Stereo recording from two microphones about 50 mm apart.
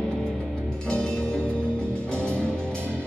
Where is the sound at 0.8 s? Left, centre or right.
Centre.